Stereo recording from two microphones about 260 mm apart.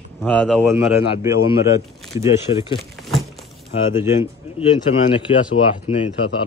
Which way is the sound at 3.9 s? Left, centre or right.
Centre.